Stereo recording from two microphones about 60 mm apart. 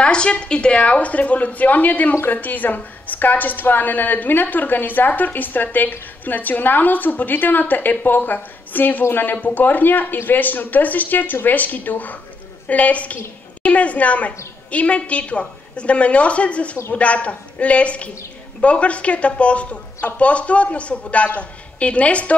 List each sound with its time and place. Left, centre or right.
0.0 s a woman's voice: centre